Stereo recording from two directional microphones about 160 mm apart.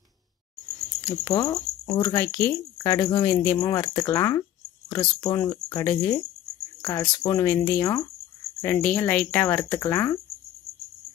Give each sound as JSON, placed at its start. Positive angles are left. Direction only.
{"t": 1.0, "sound": "speech", "side_deg": 20}